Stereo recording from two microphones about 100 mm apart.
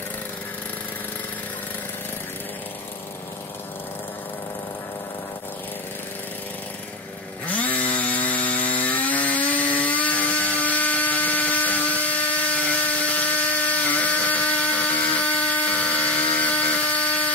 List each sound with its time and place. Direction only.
7.4 s chainsaw: 15° left (ahead or behind)
16.3 s tools: 15° left (ahead or behind)